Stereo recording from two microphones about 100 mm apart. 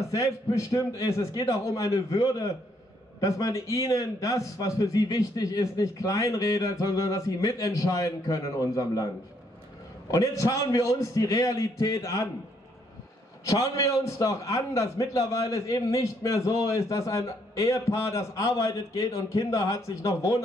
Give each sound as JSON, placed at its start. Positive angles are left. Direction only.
{"t": 0.1, "sound": "a man's voice", "side_deg": 35}
{"t": 10.1, "sound": "a man's voice", "side_deg": 35}
{"t": 13.5, "sound": "a man's voice", "side_deg": 35}